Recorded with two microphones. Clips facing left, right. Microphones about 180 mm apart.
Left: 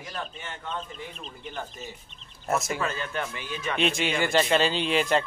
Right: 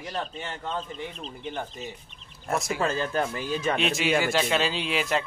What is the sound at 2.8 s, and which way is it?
Speech, 35° right (ahead or behind).